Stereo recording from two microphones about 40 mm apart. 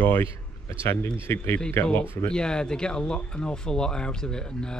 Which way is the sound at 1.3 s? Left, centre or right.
Left.